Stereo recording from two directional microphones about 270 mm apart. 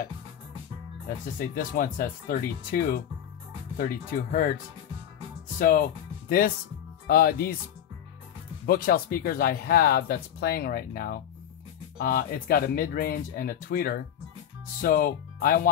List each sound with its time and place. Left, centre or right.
1.0 s speech: left
5.6 s speech: left
8.6 s speech: left